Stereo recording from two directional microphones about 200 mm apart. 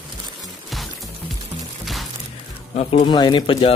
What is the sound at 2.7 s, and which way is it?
Speech, 30° left (ahead or behind).